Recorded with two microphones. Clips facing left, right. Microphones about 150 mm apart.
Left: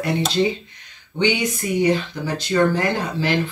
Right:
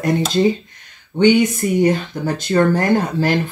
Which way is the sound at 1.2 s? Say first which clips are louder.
Right 8 dB; 50° right (ahead or behind).